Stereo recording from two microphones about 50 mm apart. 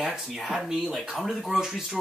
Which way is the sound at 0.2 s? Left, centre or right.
Centre.